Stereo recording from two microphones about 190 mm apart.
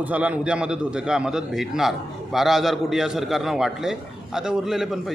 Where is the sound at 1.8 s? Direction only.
Centre (ahead or behind).